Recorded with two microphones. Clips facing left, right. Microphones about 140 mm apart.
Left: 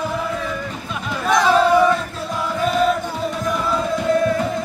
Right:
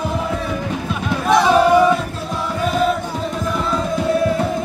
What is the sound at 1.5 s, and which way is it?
Battle cry, 10° right (ahead or behind).